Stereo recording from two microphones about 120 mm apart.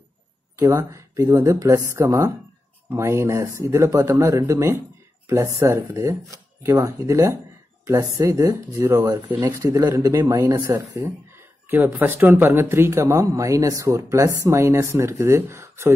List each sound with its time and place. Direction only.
0.6 s speech: 25° right (ahead or behind)
9.6 s speech: 30° right (ahead or behind)